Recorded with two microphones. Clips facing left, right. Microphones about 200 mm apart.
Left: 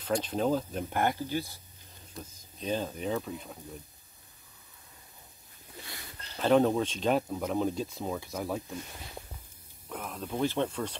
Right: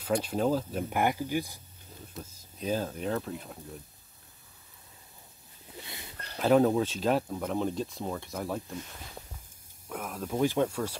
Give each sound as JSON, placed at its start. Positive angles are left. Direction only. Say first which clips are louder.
{"t": 0.0, "sound": "speech", "louder": "right 1 dB", "side_deg": -10}
{"t": 5.9, "sound": "a sound", "louder": "right 1 dB", "side_deg": -20}
{"t": 6.3, "sound": "speech", "louder": "right 1 dB", "side_deg": -5}
{"t": 9.8, "sound": "speech", "louder": "right 2 dB", "side_deg": -5}